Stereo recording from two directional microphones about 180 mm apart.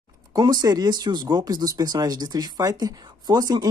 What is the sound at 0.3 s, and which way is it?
Speech, 20° right (ahead or behind).